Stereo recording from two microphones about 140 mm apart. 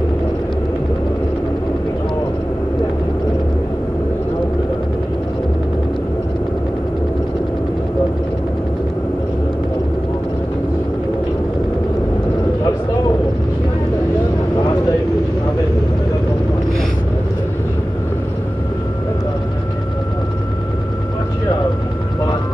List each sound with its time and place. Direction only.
14.6 s vehicle: 30° left (ahead or behind)